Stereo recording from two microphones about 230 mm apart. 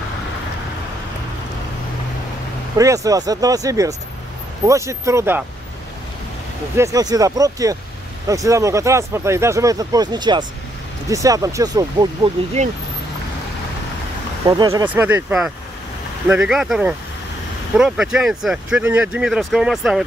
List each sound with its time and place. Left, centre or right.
2.8 s speech: centre
6.8 s speech: centre
12.6 s speech: right
14.5 s speech: centre